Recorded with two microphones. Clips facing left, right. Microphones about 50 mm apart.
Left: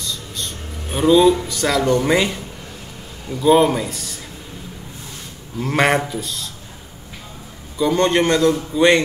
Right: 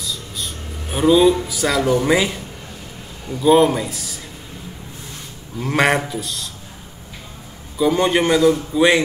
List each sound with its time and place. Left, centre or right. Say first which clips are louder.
0.0 s a man's voice: even; centre
5.6 s a man's voice: even; centre
7.7 s a man's voice: even; centre